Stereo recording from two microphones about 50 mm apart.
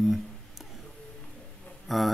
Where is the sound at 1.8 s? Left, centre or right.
Centre.